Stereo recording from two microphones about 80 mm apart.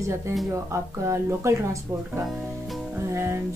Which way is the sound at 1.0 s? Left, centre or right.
Right.